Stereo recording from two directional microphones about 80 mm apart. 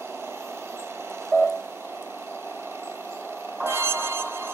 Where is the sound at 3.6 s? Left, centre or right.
Right.